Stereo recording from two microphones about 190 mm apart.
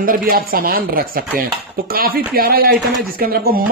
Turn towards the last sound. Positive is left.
turn(degrees=-50)  # may be behind; listen again after turning